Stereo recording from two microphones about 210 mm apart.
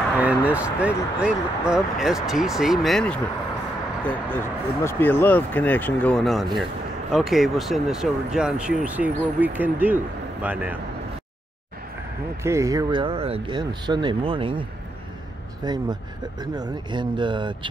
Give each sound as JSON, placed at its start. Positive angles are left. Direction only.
{"t": 0.2, "sound": "speech", "side_deg": -5}
{"t": 12.4, "sound": "speech", "side_deg": -15}
{"t": 15.6, "sound": "speech", "side_deg": -20}